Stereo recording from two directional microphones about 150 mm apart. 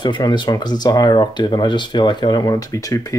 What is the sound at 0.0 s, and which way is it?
Speech, 30° left (ahead or behind).